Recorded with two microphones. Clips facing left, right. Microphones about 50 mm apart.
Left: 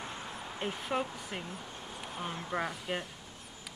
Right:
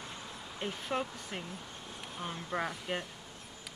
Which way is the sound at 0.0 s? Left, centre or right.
Left.